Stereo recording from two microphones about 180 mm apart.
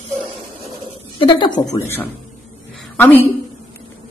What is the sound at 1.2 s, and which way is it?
Speech, 20° left (ahead or behind).